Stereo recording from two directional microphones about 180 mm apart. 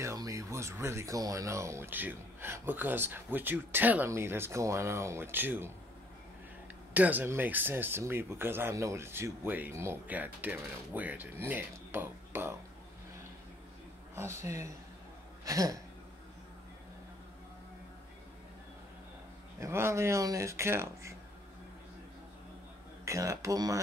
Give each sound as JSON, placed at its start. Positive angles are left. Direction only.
{"t": 0.0, "sound": "speech", "side_deg": -15}
{"t": 6.9, "sound": "speech", "side_deg": -10}
{"t": 14.1, "sound": "speech", "side_deg": -15}
{"t": 15.4, "sound": "a sound", "side_deg": -20}
{"t": 19.6, "sound": "speech", "side_deg": -15}
{"t": 23.0, "sound": "speech", "side_deg": -15}